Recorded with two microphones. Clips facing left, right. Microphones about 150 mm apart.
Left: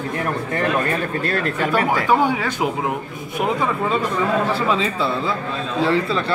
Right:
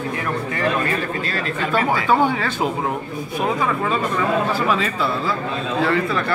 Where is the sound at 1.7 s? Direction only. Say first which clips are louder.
Right 1 dB; 10° left (ahead or behind).